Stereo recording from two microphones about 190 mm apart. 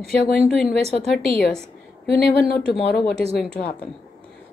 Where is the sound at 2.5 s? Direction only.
Centre (ahead or behind).